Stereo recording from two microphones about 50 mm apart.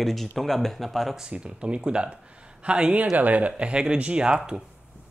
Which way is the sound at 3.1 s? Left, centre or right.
Right.